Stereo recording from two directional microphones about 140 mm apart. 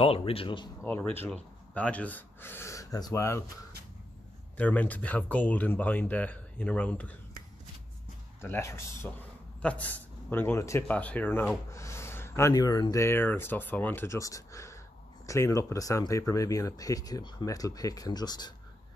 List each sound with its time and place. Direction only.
0.0 s speech: 45° left (ahead or behind)
0.8 s speech: 10° left (ahead or behind)
4.6 s speech: 10° left (ahead or behind)
8.4 s speech: 20° left (ahead or behind)
9.6 s a man's voice: 10° left (ahead or behind); by 18.5 s 30° left (ahead or behind)